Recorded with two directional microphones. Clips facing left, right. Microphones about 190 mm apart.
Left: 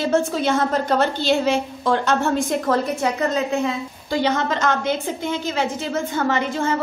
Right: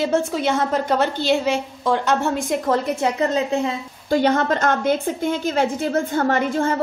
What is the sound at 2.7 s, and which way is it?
Speech, 25° right (ahead or behind).